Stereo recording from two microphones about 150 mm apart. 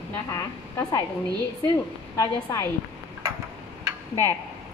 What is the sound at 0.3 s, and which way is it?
Speech, 20° left (ahead or behind).